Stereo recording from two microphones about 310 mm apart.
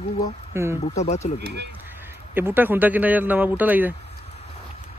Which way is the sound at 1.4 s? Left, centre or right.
Right.